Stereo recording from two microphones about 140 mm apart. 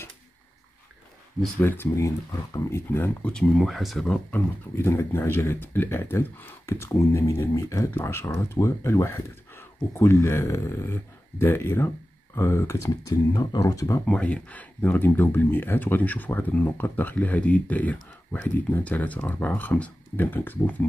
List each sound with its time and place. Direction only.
1.6 s speech: 15° left (ahead or behind)
14.0 s speech: 10° left (ahead or behind)